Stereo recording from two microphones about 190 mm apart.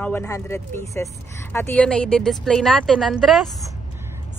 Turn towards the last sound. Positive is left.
turn(degrees=0)  # may be behind; listen again after turning